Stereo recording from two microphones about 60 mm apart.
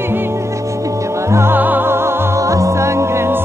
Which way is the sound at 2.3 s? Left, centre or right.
Right.